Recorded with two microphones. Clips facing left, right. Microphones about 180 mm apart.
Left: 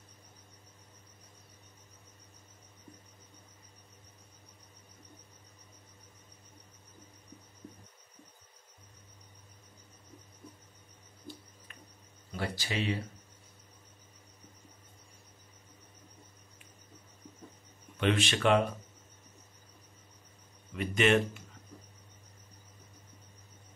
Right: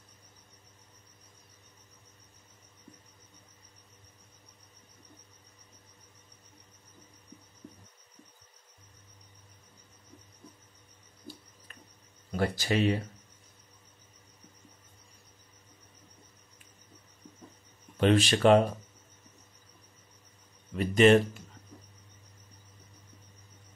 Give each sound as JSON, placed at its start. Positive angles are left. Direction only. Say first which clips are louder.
{"t": 12.3, "sound": "speech", "louder": "right 8 dB", "side_deg": -45}
{"t": 17.9, "sound": "speech", "louder": "right 5 dB", "side_deg": -35}
{"t": 20.7, "sound": "a sound", "louder": "right 6 dB", "side_deg": -35}